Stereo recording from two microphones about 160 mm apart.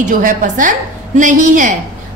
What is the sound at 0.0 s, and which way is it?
A woman's voice, 55° right (ahead or behind).